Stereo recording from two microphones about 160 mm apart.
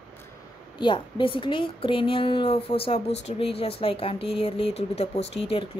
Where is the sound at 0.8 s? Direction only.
30° left (ahead or behind).